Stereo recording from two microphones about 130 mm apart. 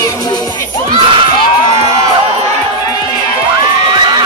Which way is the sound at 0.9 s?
40° right (ahead or behind).